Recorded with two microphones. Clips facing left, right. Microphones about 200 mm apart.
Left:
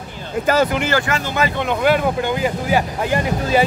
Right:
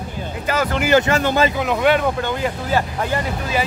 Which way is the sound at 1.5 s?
Centre (ahead or behind).